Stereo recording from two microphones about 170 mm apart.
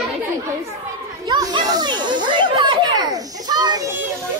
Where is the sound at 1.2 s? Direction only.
25° right (ahead or behind).